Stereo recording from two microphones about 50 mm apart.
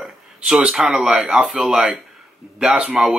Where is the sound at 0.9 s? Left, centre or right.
Centre.